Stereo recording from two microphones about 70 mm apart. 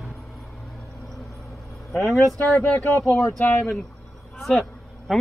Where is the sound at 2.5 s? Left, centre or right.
Left.